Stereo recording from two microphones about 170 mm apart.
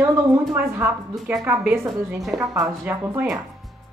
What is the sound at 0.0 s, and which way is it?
A woman's voice, 15° right (ahead or behind).